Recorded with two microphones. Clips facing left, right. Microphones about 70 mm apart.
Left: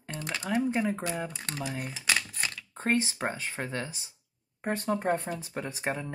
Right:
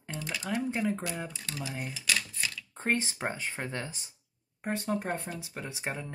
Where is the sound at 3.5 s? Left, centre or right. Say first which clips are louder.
Left 2 dB; centre.